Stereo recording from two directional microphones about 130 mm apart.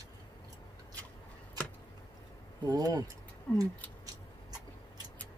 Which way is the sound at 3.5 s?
15° left (ahead or behind).